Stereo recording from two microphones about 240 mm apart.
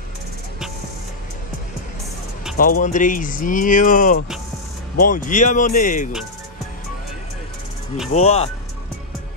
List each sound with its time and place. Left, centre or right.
2.5 s speech: left
8.1 s speech: left